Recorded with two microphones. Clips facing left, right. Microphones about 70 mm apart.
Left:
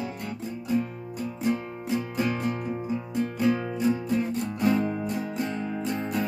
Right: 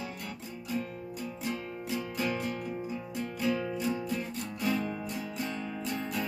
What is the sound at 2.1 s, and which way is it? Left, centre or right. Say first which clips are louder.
Music: left 5 dB; left.